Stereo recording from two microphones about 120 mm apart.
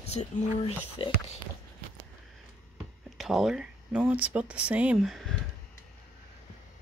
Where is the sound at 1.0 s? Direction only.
45° left (ahead or behind).